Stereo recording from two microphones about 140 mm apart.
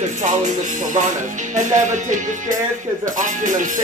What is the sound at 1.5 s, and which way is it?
Speech, 60° right (ahead or behind).